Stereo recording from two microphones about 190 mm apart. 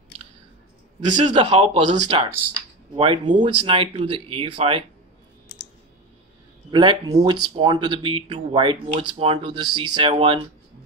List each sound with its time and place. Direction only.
1.0 s speech: 40° right (ahead or behind)
3.3 s speech: 40° right (ahead or behind)
3.7 s speech: 25° right (ahead or behind)
6.7 s speech: 25° right (ahead or behind)